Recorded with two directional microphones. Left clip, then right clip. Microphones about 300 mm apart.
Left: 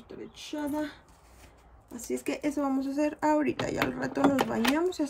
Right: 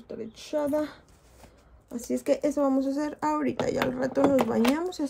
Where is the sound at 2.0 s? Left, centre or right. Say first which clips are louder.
Right 7 dB; centre.